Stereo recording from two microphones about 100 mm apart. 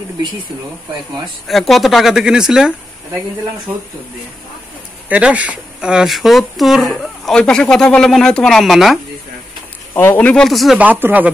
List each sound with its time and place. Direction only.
1.2 s speech: centre (ahead or behind)
5.1 s speech: 15° right (ahead or behind)
9.9 s speech: 20° left (ahead or behind)
10.3 s speech: 5° left (ahead or behind)
10.8 s speech: 20° right (ahead or behind)